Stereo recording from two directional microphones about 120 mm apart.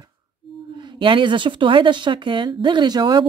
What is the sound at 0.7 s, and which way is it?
A woman's voice, 40° right (ahead or behind).